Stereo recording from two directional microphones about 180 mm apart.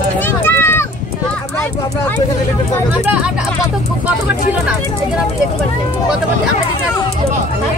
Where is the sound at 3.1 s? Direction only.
5° right (ahead or behind).